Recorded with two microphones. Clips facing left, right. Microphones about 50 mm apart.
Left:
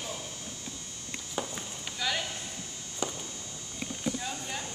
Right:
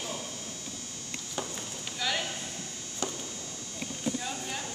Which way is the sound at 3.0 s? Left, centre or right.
Centre.